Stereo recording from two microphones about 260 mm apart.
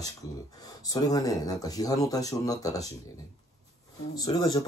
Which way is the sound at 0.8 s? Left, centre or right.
Centre.